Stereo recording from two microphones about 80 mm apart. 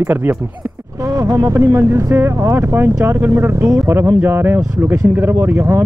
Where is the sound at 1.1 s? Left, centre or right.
Right.